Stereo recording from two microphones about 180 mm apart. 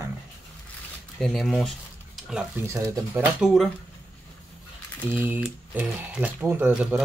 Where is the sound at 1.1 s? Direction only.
Centre (ahead or behind).